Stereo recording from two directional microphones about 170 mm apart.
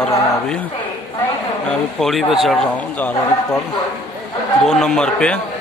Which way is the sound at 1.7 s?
Centre (ahead or behind).